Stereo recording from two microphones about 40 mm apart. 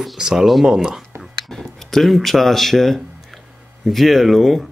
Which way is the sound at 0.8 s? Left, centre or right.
Centre.